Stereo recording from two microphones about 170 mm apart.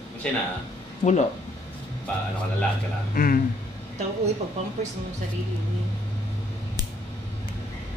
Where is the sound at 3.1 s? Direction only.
55° left (ahead or behind).